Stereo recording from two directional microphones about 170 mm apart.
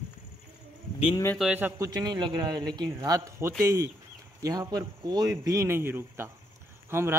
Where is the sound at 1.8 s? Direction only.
20° right (ahead or behind).